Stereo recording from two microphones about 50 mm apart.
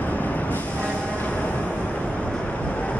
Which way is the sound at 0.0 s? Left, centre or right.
Left.